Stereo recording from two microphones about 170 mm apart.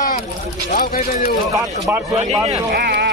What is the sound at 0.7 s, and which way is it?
Speech, 60° left (ahead or behind).